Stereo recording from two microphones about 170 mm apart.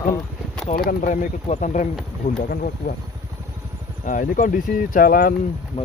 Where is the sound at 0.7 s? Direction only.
55° left (ahead or behind).